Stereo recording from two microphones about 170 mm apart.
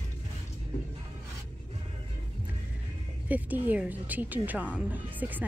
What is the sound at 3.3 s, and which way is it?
Speech, 10° right (ahead or behind).